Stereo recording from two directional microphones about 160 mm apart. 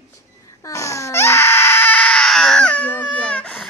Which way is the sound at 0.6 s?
20° left (ahead or behind).